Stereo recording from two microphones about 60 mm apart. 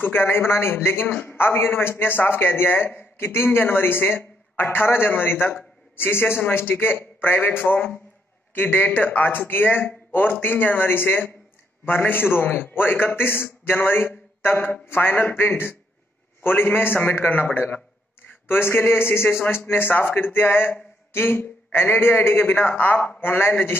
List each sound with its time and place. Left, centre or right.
0.0 s speech: left
18.5 s speech: left